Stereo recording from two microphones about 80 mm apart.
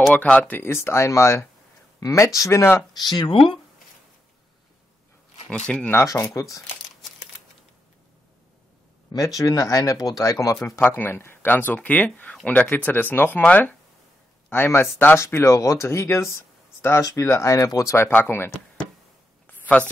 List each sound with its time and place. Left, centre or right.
0.1 s speech: centre; by 2.6 s left
2.9 s speech: left
5.5 s speech: centre
6.2 s speech: left
9.4 s speech: left
10.8 s speech: left
17.9 s speech: left
19.4 s a sound: centre